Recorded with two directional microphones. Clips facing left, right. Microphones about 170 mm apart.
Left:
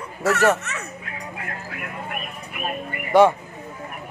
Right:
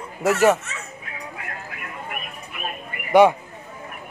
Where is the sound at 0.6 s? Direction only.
70° left (ahead or behind).